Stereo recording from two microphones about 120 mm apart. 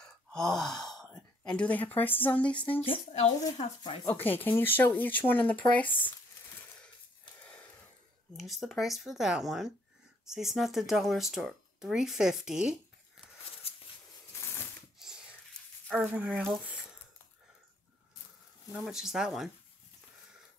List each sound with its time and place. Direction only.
0.0 s speech: 5° left (ahead or behind)
2.8 s speech: 55° left (ahead or behind)
4.0 s speech: 15° left (ahead or behind)
8.4 s speech: centre (ahead or behind)
15.0 s a sound: 5° right (ahead or behind)
16.0 s speech: 15° right (ahead or behind)
18.7 s speech: 5° right (ahead or behind)